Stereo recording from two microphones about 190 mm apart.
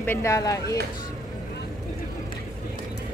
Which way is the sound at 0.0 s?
10° left (ahead or behind).